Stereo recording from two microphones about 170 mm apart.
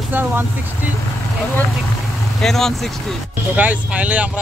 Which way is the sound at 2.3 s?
Centre (ahead or behind).